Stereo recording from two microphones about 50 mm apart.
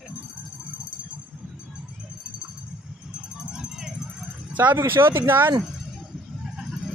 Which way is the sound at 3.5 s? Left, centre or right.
Centre.